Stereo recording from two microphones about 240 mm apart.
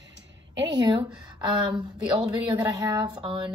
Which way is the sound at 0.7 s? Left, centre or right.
Centre.